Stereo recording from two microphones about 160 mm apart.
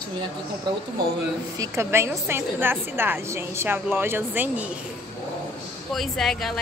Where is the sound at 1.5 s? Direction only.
20° right (ahead or behind).